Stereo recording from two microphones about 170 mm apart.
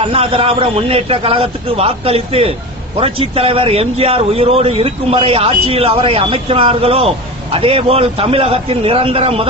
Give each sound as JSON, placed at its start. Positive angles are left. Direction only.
{"t": 0.0, "sound": "speech", "side_deg": -35}